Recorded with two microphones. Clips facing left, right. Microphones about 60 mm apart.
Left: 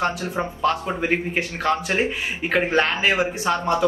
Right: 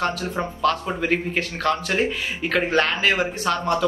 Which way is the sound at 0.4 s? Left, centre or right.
Centre.